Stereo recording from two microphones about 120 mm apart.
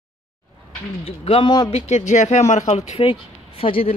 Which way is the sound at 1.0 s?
50° left (ahead or behind).